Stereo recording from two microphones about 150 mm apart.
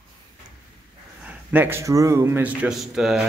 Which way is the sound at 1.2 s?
15° right (ahead or behind).